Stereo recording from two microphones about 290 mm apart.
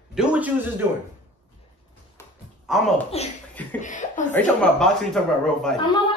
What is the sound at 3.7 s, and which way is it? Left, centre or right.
Chuckle, left.